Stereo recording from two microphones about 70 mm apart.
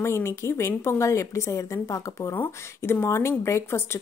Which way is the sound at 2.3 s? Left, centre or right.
Left.